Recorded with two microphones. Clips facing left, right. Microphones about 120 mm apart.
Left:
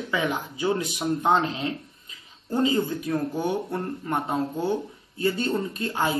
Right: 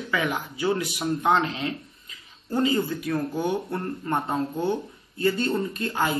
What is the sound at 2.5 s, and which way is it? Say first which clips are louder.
A man's voice: even; 20° left (ahead or behind).